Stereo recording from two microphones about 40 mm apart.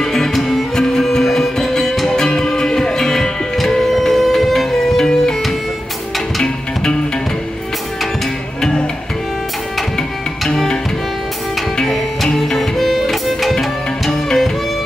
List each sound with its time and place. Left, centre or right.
0.0 s music: centre
8.5 s music: centre
12.4 s music: centre